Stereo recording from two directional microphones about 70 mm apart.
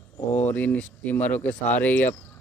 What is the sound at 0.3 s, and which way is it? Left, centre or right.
Speech, left.